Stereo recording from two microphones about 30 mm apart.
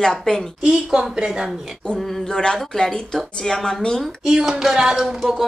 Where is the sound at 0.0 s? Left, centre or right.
Centre.